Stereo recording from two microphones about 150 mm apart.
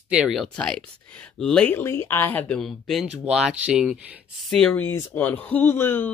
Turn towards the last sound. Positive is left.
turn(degrees=15)  # may be behind; listen again after turning